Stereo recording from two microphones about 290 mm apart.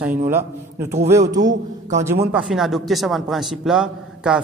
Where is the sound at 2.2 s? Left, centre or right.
Centre.